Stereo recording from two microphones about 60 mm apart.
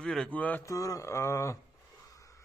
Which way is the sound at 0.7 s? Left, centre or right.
Left.